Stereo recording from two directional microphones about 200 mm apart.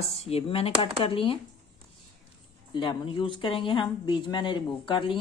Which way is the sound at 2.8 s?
25° left (ahead or behind).